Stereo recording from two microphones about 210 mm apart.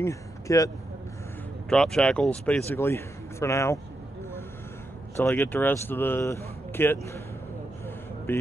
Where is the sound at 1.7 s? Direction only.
5° left (ahead or behind).